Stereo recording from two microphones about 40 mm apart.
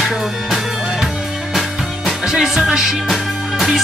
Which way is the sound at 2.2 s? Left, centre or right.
Centre.